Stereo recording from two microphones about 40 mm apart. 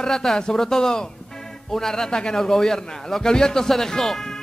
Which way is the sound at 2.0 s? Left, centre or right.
Centre.